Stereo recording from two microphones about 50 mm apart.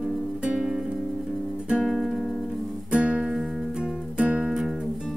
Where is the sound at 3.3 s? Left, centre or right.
Centre; by 4.5 s right.